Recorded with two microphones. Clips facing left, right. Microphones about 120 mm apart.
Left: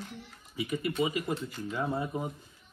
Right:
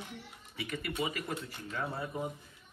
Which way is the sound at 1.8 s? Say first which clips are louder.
Left 4 dB; 20° left (ahead or behind).